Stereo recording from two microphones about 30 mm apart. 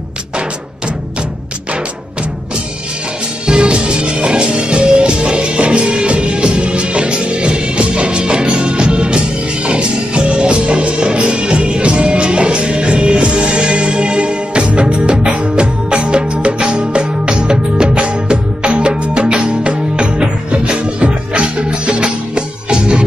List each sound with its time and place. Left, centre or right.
3.4 s music: right